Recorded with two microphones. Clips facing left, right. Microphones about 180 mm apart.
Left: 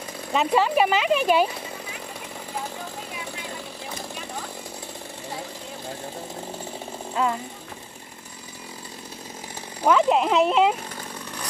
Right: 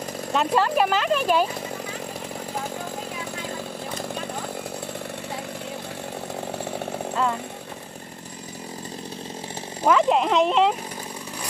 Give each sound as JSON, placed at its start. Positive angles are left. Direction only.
{"t": 0.3, "sound": "speech", "side_deg": 0}
{"t": 9.8, "sound": "speech", "side_deg": 0}